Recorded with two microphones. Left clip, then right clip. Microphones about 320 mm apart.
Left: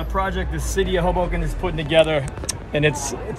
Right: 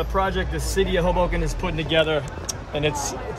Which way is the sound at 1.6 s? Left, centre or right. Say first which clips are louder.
Left 5 dB; centre.